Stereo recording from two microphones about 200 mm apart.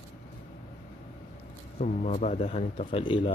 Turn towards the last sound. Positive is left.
turn(degrees=25)  # may be behind; listen again after turning